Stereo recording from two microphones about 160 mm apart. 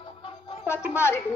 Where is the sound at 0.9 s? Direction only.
15° left (ahead or behind).